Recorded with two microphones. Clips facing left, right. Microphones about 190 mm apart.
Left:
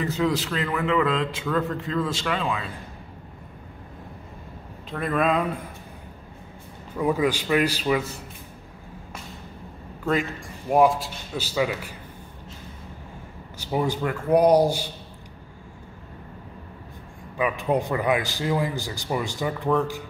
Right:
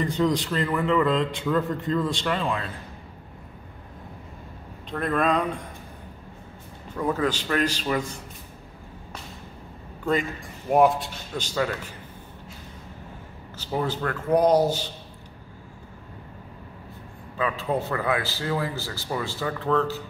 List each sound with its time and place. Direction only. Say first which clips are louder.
0.0 s a man's voice: right 1 dB; 5° left (ahead or behind)
4.9 s a man's voice: even; centre (ahead or behind)
7.0 s a man's voice: left 2 dB; 10° left (ahead or behind)
10.7 s a man's voice: even; centre (ahead or behind)
13.6 s a man's voice: left 2 dB; 10° left (ahead or behind)
17.4 s a man's voice: left 3 dB; 15° left (ahead or behind)